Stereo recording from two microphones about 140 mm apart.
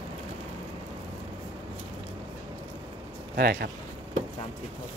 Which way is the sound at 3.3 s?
90° right.